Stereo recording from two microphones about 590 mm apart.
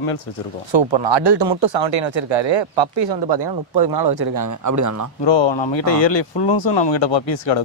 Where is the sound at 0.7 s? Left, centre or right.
Right.